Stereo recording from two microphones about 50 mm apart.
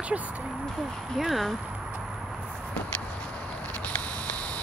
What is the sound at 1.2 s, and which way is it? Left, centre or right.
Speech, centre.